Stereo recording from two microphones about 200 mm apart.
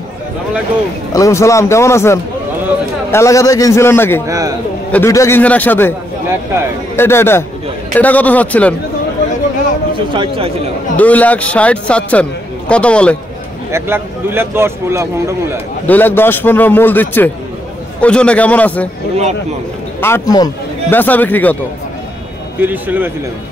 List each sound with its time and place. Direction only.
1.1 s a man's voice: 15° left (ahead or behind)
4.3 s speech: 20° right (ahead or behind)
4.9 s a man's voice: 15° left (ahead or behind)
7.0 s a man's voice: 10° left (ahead or behind)
9.9 s speech: 25° right (ahead or behind)
11.0 s a man's voice: 5° left (ahead or behind)
13.7 s speech: 10° right (ahead or behind)
15.9 s a man's voice: 10° left (ahead or behind)
20.0 s a man's voice: 15° left (ahead or behind)
22.6 s speech: 10° right (ahead or behind)